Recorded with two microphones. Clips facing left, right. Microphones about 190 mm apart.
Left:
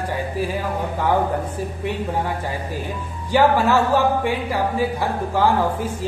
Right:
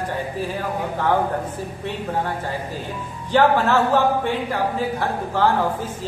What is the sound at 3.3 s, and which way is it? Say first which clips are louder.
A woman's voice: left 1 dB; 10° left (ahead or behind).